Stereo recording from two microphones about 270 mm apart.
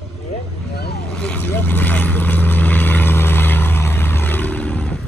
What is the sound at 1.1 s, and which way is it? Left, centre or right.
Vehicle, centre.